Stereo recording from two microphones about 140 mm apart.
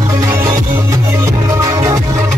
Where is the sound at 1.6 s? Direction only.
25° right (ahead or behind).